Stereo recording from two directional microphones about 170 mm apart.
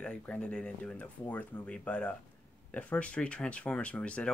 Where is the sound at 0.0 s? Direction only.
5° left (ahead or behind).